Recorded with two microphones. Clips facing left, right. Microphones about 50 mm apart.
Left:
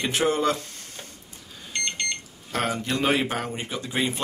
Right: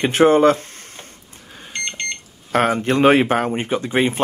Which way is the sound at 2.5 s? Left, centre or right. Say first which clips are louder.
Right 9 dB; right.